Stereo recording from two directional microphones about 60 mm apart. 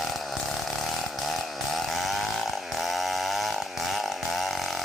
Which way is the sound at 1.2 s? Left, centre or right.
Centre.